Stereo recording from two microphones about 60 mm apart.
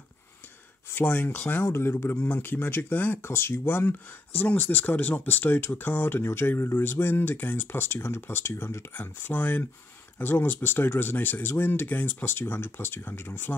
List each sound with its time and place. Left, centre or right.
0.9 s speech: left
3.2 s speech: left
4.4 s speech: left
8.9 s speech: left